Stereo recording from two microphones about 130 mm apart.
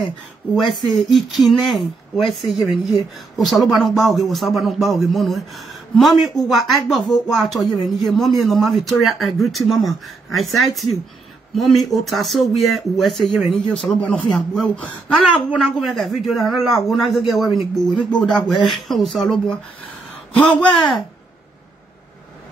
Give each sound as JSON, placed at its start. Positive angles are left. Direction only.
{"t": 0.8, "sound": "a man's voice", "side_deg": 0}